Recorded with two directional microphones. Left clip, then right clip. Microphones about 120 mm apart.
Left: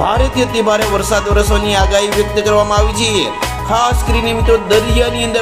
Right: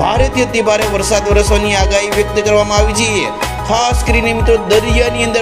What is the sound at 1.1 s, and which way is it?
Music, 55° right (ahead or behind).